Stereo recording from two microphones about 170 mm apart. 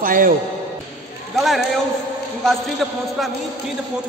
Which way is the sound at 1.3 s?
Centre (ahead or behind).